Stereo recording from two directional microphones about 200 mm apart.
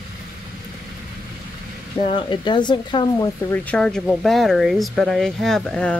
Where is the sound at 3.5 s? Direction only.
5° left (ahead or behind).